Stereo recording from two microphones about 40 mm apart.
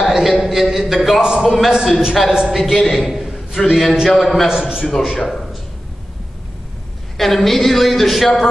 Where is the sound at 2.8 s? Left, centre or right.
Centre.